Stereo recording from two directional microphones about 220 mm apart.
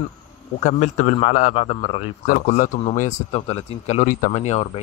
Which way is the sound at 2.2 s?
35° left (ahead or behind).